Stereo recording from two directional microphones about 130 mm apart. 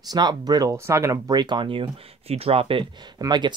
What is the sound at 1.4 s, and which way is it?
Speech, 35° right (ahead or behind).